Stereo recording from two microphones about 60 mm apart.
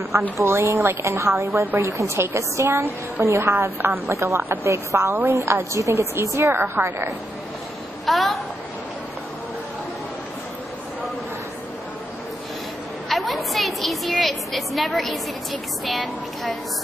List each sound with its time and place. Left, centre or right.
0.4 s a woman's voice: right
8.0 s a woman's voice: centre
13.1 s a sound: centre
15.8 s a woman's voice: centre